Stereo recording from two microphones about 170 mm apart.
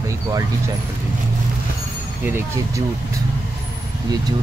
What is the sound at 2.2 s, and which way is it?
Speech, 15° right (ahead or behind).